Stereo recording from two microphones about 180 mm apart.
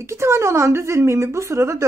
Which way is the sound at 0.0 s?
15° right (ahead or behind).